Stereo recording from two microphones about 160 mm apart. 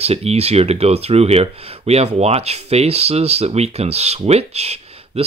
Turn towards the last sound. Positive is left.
turn(degrees=-40)  # may be behind; listen again after turning